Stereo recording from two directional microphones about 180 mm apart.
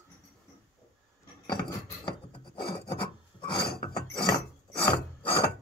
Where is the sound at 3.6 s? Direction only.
60° left (ahead or behind).